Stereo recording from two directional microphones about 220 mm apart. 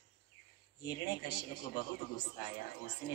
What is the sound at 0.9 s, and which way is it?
Speech, 50° left (ahead or behind).